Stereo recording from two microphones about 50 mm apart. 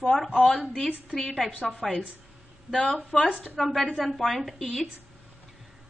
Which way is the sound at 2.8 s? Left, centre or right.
Centre.